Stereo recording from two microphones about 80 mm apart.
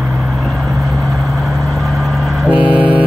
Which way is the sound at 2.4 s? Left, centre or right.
Centre.